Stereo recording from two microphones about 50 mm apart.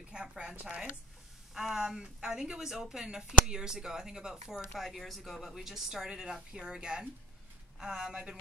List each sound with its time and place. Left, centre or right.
0.4 s speech: centre
1.5 s speech: centre
4.8 s speech: centre; by 8.4 s right